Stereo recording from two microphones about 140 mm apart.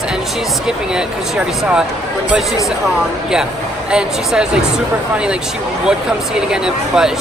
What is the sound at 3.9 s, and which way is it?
Speech, 5° right (ahead or behind).